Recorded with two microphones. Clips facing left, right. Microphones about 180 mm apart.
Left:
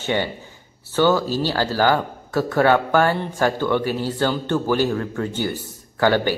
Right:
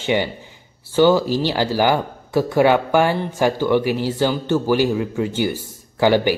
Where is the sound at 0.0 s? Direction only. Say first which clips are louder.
Right 3 dB; 15° right (ahead or behind).